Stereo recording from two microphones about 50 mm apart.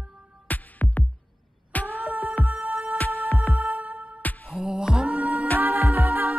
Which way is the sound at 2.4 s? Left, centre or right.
Right.